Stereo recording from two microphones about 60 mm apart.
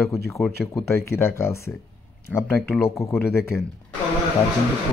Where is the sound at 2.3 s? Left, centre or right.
Left.